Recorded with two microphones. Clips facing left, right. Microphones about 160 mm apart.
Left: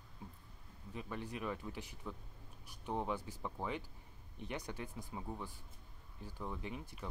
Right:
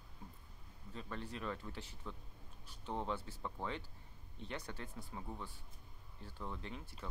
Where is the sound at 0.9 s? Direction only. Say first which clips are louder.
Left 2 dB; 15° left (ahead or behind).